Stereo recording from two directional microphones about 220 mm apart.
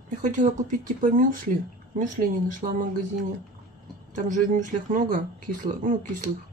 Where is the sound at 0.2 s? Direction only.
35° right (ahead or behind).